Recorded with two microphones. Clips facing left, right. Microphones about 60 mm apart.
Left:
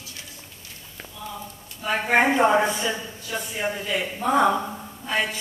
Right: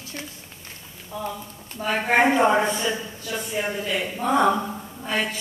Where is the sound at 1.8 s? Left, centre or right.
Right.